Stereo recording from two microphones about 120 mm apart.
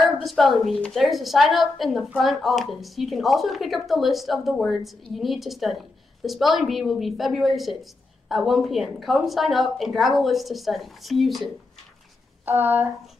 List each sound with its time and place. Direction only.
0.2 s speech: centre (ahead or behind)
12.4 s speech: 15° right (ahead or behind)